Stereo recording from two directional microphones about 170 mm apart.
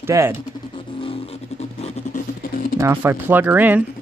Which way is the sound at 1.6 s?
40° left (ahead or behind).